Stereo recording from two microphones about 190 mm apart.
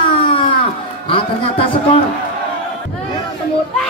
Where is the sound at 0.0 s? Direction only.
25° left (ahead or behind).